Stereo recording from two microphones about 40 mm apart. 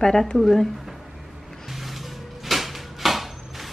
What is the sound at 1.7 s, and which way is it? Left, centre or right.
Music, centre.